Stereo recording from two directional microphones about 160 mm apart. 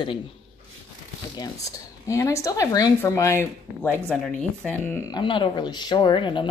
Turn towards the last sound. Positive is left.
turn(degrees=30)  # may be behind; listen again after turning